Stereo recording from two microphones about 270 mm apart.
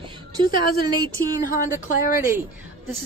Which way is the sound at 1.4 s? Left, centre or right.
Left.